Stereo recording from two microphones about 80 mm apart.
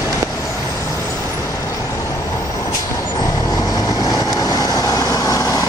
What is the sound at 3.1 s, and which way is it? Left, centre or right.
Vehicle, left.